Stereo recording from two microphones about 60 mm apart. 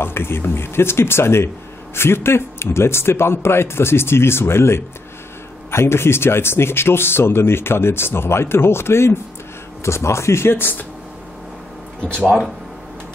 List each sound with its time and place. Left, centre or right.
0.0 s speech: left
12.0 s speech: centre